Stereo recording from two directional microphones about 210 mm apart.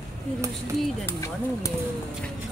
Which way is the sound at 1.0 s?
15° left (ahead or behind).